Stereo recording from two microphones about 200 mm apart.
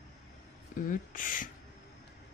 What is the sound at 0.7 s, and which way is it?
Speech, 40° left (ahead or behind).